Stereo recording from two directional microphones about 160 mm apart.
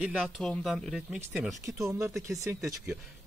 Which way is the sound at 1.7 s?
20° right (ahead or behind).